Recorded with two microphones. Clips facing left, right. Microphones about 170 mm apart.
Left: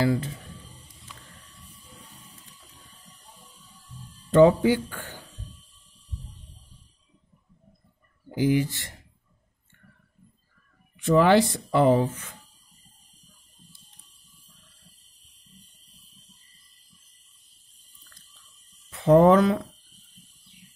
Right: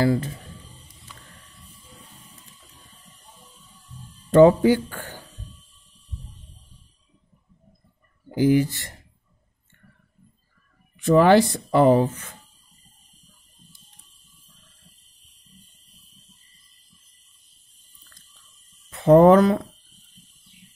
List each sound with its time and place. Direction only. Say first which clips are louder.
0.0 s speech: right 3 dB; 45° right (ahead or behind)
4.3 s speech: right 3 dB; 45° right (ahead or behind)
8.4 s speech: right 4 dB; 45° right (ahead or behind)
11.0 s speech: right 3 dB; 45° right (ahead or behind)
18.9 s speech: right 3 dB; 45° right (ahead or behind)